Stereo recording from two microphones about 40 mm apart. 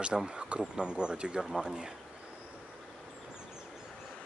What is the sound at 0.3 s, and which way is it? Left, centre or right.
Speech, right.